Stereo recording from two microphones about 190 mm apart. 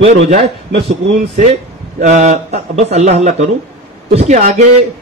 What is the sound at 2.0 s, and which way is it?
A man's voice, 40° right (ahead or behind).